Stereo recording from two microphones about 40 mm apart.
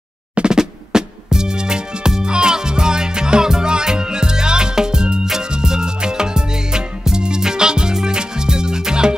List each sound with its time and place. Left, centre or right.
0.4 s music: centre